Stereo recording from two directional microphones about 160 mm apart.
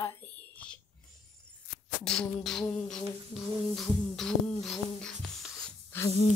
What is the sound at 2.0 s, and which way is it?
Beatboxing, 5° left (ahead or behind).